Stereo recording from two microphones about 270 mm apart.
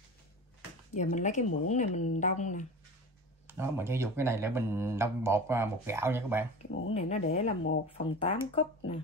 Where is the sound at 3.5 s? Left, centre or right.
Centre.